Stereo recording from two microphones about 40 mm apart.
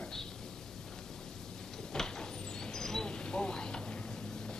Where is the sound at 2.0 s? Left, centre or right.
Centre.